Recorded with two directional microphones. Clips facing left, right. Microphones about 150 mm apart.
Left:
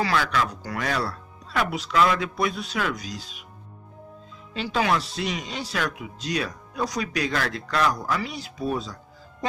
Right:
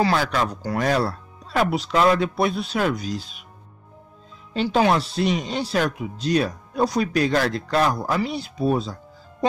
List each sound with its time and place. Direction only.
0.0 s speech: 35° right (ahead or behind)
4.6 s speech: 30° right (ahead or behind)